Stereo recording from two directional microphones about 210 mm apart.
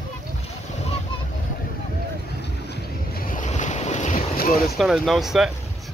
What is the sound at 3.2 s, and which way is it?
Boat, 35° left (ahead or behind).